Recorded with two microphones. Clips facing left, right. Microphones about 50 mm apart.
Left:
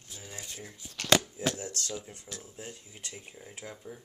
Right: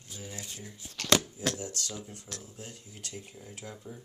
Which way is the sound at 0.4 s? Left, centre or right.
Centre.